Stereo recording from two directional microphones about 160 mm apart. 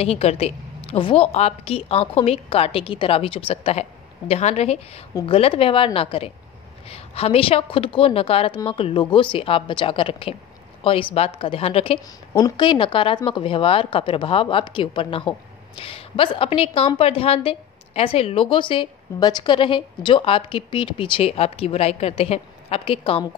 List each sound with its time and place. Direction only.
0.0 s speech: 40° left (ahead or behind)